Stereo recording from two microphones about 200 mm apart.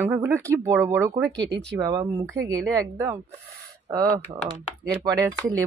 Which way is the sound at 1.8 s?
20° right (ahead or behind).